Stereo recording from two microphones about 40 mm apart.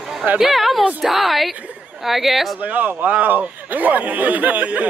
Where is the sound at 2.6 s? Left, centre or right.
Right.